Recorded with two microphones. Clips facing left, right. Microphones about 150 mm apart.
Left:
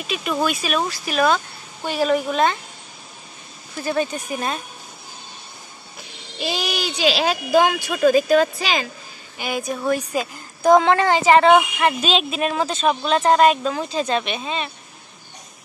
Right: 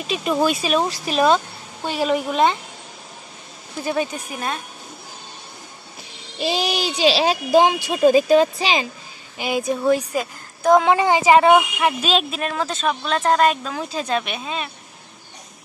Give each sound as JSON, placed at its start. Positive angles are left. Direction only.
{"t": 0.0, "sound": "speech", "side_deg": -35}
{"t": 3.8, "sound": "a woman's voice", "side_deg": -10}
{"t": 6.4, "sound": "speech", "side_deg": -30}
{"t": 9.8, "sound": "a woman's voice", "side_deg": -10}
{"t": 10.1, "sound": "a woman's voice", "side_deg": 0}